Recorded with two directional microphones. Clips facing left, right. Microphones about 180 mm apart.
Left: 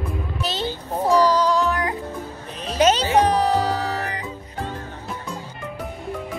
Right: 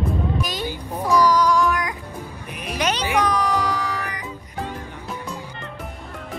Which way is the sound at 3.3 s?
35° left (ahead or behind).